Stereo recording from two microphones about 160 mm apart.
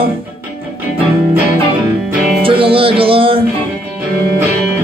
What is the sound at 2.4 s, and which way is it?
Music, 35° right (ahead or behind).